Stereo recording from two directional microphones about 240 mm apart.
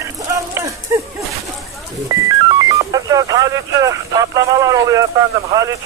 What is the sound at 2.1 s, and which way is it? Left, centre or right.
Music, centre.